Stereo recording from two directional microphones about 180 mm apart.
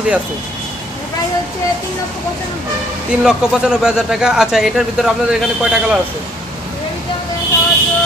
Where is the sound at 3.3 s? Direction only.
5° right (ahead or behind).